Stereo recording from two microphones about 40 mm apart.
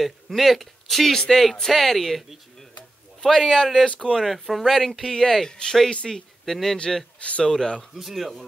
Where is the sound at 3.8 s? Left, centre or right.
Left.